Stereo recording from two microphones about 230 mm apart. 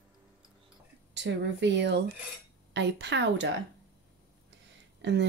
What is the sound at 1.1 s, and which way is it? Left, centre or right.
Speech, right.